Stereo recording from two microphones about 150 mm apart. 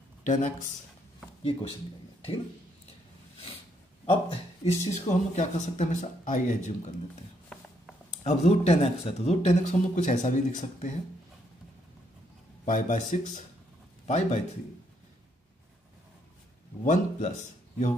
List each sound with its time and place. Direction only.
0.2 s speech: 60° left (ahead or behind)
1.4 s speech: 40° left (ahead or behind)
4.0 s speech: 35° left (ahead or behind)
4.8 s speech: 50° left (ahead or behind)
8.2 s speech: 45° left (ahead or behind)
12.6 s speech: 55° left (ahead or behind)
16.8 s speech: 55° left (ahead or behind)